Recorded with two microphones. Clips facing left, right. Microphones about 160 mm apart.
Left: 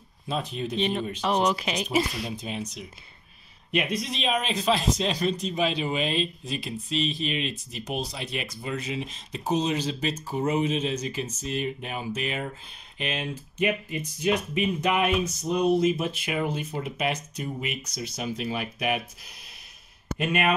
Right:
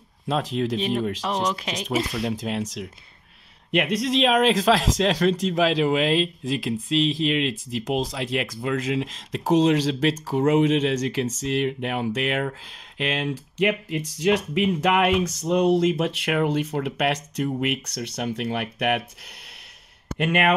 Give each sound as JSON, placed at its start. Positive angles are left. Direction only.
{"t": 0.3, "sound": "speech", "side_deg": -90}
{"t": 0.7, "sound": "speech", "side_deg": -5}
{"t": 2.2, "sound": "speech", "side_deg": -90}
{"t": 3.7, "sound": "speech", "side_deg": -75}
{"t": 20.2, "sound": "speech", "side_deg": -65}